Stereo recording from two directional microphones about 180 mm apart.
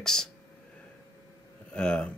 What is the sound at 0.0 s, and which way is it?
Speech, 5° left (ahead or behind).